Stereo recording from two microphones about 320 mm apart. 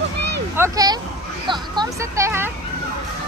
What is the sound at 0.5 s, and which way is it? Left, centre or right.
Speech, centre.